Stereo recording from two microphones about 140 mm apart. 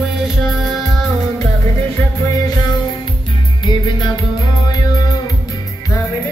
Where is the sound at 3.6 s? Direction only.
35° left (ahead or behind).